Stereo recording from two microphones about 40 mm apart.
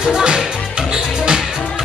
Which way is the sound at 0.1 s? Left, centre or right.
Right.